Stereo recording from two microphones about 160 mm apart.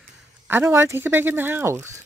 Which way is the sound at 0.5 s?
15° right (ahead or behind).